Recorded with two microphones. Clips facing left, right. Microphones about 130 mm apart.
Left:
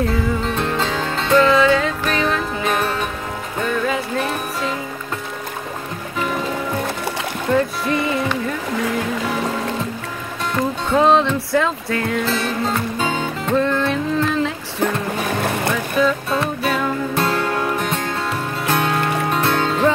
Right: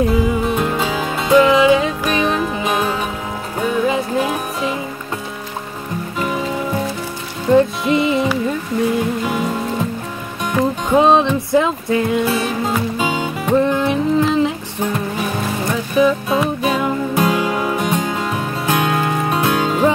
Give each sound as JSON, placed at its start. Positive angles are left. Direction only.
{"t": 0.0, "sound": "music", "side_deg": -15}
{"t": 7.5, "sound": "music", "side_deg": -20}
{"t": 10.5, "sound": "speech", "side_deg": -15}
{"t": 13.0, "sound": "music", "side_deg": -10}
{"t": 16.0, "sound": "music", "side_deg": -15}